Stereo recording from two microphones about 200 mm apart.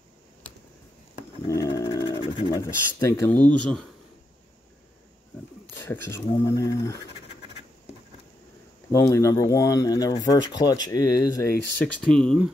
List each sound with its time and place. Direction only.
1.5 s speech: 20° left (ahead or behind)
5.8 s speech: 15° left (ahead or behind)
8.9 s speech: 15° left (ahead or behind)
11.8 s speech: 5° left (ahead or behind)